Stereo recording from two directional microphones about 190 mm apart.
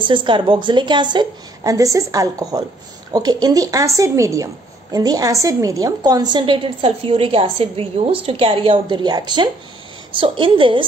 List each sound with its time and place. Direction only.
0.0 s a woman's voice: 25° right (ahead or behind)